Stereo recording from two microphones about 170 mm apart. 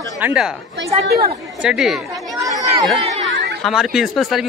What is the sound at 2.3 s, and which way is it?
Speech, 20° right (ahead or behind).